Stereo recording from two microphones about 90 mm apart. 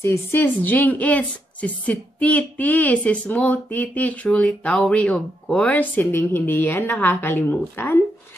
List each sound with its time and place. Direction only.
0.0 s a woman's voice: 25° left (ahead or behind)